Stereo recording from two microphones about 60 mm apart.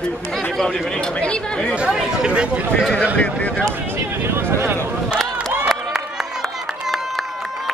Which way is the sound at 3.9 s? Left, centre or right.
Right.